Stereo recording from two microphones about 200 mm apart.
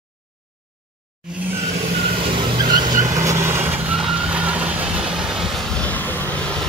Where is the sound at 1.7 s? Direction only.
30° right (ahead or behind).